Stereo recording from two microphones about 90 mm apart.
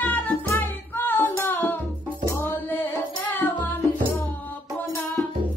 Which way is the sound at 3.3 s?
20° left (ahead or behind).